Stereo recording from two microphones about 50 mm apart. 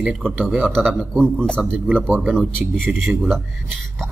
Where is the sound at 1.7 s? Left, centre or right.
Right.